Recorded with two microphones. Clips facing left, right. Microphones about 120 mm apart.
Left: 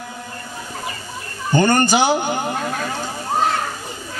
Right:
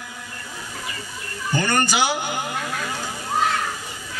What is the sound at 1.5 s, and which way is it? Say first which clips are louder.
A man's voice: left 6 dB; 30° left (ahead or behind).